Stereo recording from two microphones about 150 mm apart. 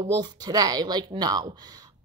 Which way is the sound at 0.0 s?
30° right (ahead or behind).